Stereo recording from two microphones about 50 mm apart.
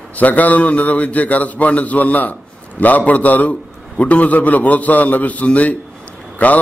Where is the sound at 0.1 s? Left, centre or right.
Left.